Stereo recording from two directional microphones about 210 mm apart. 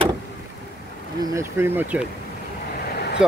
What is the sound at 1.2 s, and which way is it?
Speech, 15° right (ahead or behind).